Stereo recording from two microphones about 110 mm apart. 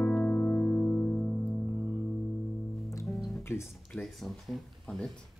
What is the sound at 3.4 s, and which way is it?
Guitar, 25° left (ahead or behind).